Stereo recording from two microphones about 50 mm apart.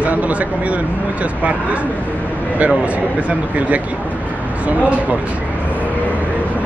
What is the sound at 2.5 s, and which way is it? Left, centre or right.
Speech, right.